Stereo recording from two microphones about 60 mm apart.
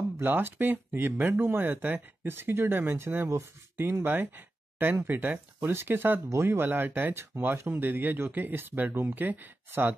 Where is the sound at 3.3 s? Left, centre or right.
Right.